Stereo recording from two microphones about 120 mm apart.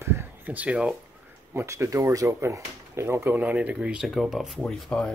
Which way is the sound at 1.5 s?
25° right (ahead or behind).